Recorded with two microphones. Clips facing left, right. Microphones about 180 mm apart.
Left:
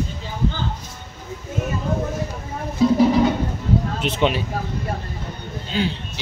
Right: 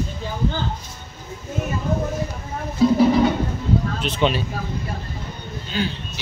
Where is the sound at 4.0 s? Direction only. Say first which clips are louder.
Left 1 dB; 20° left (ahead or behind).